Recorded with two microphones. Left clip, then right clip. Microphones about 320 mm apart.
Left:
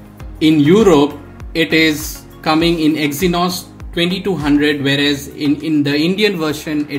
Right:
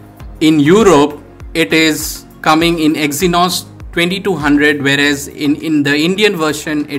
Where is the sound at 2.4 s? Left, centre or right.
Right.